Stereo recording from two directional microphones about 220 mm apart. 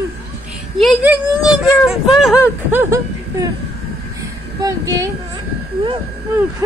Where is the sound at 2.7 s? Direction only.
10° right (ahead or behind).